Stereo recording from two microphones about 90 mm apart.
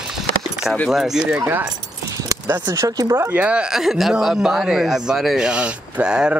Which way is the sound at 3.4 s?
10° right (ahead or behind).